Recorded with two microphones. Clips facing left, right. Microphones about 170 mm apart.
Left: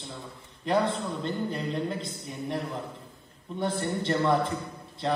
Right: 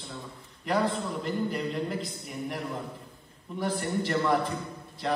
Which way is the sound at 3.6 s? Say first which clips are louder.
Even; 25° left (ahead or behind).